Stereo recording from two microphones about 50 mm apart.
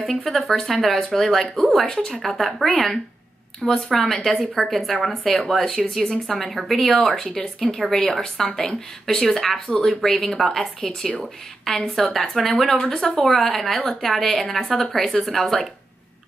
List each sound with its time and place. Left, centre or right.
0.2 s speech: centre
7.2 s a woman's voice: centre
12.7 s speech: centre